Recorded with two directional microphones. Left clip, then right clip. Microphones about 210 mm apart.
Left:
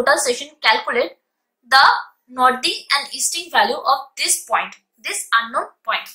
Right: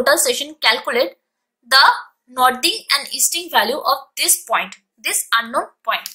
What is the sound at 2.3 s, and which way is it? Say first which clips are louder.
A woman's voice: right 1 dB; 45° right (ahead or behind).